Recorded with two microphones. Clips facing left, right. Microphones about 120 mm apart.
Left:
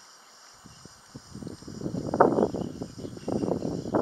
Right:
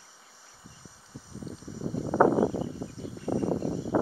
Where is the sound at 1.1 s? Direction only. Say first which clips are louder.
Even; 25° left (ahead or behind).